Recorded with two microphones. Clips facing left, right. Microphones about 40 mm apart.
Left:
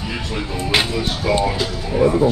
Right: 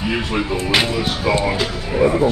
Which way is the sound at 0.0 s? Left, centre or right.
Right.